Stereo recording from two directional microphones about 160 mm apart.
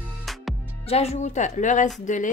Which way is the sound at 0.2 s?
Centre (ahead or behind).